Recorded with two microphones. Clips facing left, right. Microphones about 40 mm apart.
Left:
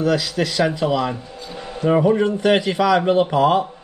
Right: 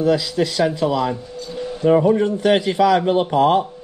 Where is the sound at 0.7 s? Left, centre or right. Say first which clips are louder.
Right 1 dB; centre.